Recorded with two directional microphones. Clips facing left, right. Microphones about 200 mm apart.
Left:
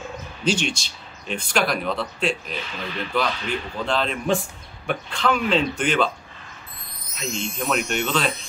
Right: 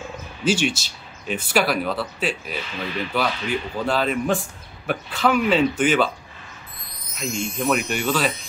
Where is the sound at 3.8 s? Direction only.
5° right (ahead or behind).